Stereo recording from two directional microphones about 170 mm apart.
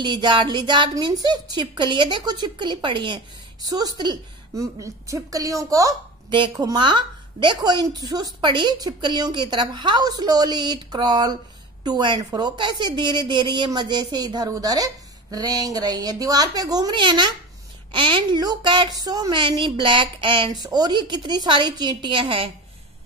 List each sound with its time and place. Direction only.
0.0 s a woman's voice: 25° right (ahead or behind)